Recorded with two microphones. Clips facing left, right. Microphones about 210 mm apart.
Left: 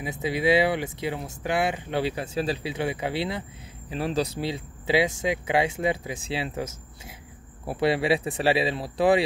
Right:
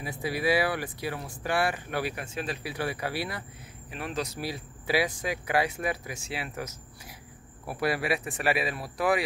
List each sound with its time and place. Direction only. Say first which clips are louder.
0.0 s speech: left 4 dB; 20° left (ahead or behind)
3.9 s speech: left 7 dB; 35° left (ahead or behind)